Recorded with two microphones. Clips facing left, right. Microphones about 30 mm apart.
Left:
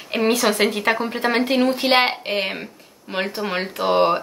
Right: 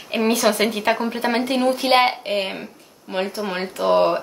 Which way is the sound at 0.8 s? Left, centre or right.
Centre.